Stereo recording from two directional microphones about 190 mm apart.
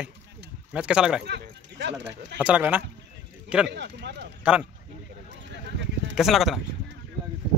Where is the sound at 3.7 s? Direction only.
65° right (ahead or behind).